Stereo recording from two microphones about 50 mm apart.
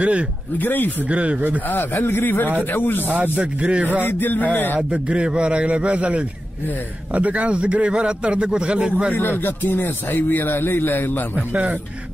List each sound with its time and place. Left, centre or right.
0.0 s a man's voice: right
0.6 s a sound: left
1.0 s a man's voice: right
1.7 s speech: left
3.3 s speech: right
4.0 s a sound: left
4.7 s a man's voice: right
9.1 s speech: left